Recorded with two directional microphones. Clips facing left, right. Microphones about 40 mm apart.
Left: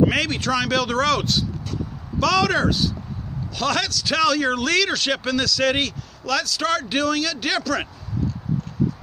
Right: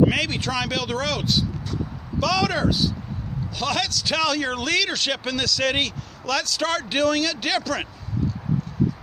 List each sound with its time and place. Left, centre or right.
0.0 s a man's voice: centre; by 7.4 s right